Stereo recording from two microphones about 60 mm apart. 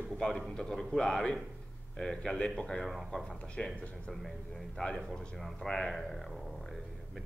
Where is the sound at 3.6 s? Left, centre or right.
Left.